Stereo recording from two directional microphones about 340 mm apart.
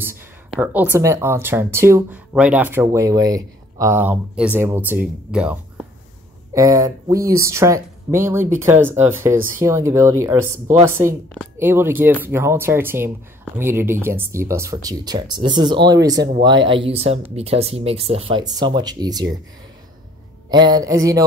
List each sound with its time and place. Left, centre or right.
0.0 s speech: centre
20.4 s speech: centre